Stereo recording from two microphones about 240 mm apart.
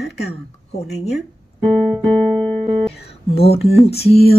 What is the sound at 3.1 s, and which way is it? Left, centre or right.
Speech, left.